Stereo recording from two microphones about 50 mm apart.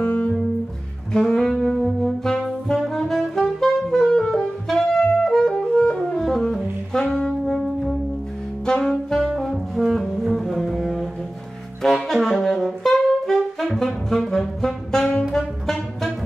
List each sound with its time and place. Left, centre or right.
0.0 s music: left
1.1 s saxophone: centre
5.9 s music: centre
6.2 s saxophone: centre
9.4 s music: centre
11.8 s saxophone: centre
15.3 s music: centre